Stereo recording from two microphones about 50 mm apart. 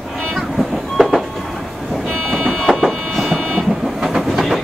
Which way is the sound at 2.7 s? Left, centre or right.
Centre.